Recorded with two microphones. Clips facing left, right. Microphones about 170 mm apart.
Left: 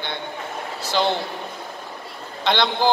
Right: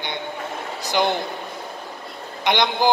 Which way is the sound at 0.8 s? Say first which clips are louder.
Even; 15° right (ahead or behind).